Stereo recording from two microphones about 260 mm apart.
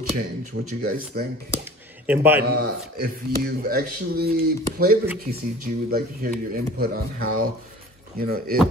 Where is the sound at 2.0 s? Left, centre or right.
Centre.